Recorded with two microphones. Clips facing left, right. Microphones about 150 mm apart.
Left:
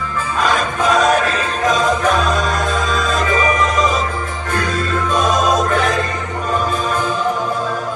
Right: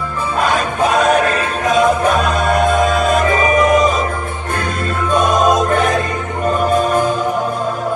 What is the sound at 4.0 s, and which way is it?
Music, 55° right (ahead or behind).